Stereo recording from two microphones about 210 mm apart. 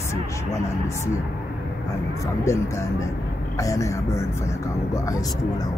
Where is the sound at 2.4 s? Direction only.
15° left (ahead or behind).